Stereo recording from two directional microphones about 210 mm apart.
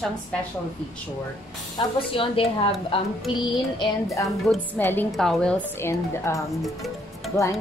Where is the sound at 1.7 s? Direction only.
25° left (ahead or behind).